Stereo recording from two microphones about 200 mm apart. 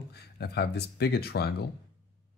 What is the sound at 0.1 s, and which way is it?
Speech, 55° left (ahead or behind).